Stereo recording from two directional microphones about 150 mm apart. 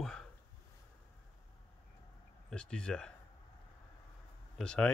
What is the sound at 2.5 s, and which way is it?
Speech, 5° left (ahead or behind).